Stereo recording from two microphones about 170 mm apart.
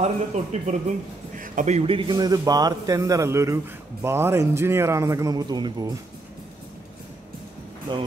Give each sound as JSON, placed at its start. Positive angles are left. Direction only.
{"t": 0.0, "sound": "a man's voice", "side_deg": -40}
{"t": 2.0, "sound": "a man's voice", "side_deg": -20}